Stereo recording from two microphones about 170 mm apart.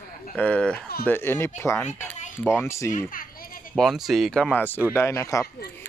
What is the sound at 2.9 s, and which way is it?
Speech, 55° left (ahead or behind).